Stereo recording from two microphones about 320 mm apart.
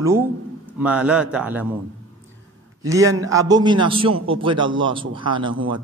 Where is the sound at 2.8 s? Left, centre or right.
Centre.